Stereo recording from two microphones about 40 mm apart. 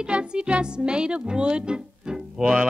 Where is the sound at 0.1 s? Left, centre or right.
Right.